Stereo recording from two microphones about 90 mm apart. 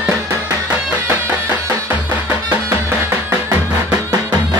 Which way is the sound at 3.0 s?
25° right (ahead or behind).